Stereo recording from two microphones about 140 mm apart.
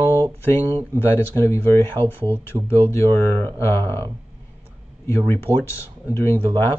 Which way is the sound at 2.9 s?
15° left (ahead or behind).